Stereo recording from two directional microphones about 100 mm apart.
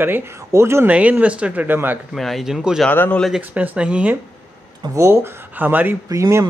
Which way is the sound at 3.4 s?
15° right (ahead or behind).